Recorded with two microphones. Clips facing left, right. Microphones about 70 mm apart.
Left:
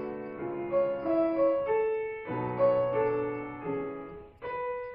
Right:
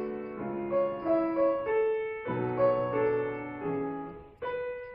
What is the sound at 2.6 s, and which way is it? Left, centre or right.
Music, centre.